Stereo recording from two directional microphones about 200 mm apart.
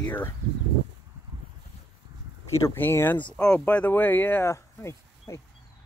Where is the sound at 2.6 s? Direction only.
10° left (ahead or behind).